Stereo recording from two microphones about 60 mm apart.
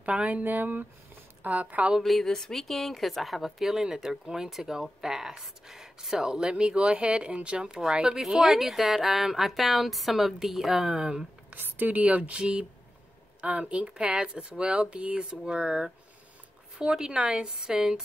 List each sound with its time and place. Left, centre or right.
0.0 s speech: right
2.0 s a woman's voice: centre
11.5 s speech: right; by 18.0 s centre